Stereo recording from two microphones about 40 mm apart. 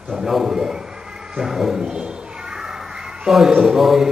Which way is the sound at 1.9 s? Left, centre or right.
Centre.